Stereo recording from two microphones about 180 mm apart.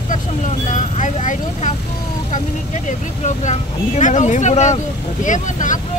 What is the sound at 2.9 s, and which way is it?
Speech, 40° left (ahead or behind).